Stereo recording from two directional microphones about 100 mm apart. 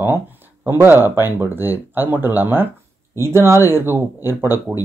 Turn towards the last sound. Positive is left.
turn(degrees=-20)  # may be behind; listen again after turning